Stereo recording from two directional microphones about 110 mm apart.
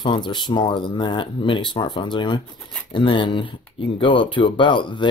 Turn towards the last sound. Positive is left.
turn(degrees=45)  # may be behind; listen again after turning